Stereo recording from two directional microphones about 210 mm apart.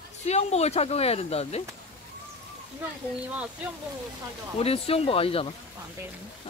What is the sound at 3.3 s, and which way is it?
Speech, 5° right (ahead or behind).